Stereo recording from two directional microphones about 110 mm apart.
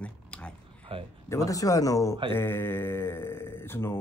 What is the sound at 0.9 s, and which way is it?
Speech, 55° right (ahead or behind).